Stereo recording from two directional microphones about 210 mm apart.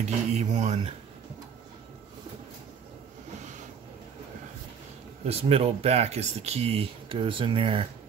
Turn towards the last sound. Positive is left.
turn(degrees=-25)  # may be behind; listen again after turning